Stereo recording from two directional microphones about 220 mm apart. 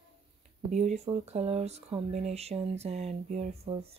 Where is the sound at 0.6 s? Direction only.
30° right (ahead or behind).